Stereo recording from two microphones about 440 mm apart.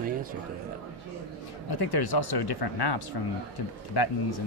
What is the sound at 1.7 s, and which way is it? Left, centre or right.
Speech, left.